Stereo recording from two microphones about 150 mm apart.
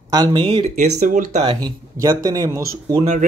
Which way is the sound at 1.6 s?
25° right (ahead or behind).